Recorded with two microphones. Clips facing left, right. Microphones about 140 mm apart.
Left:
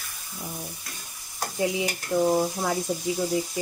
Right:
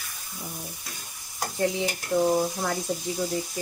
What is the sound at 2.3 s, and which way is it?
Speech, 10° left (ahead or behind).